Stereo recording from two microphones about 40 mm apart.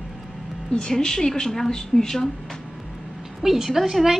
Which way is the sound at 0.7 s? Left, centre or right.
Centre.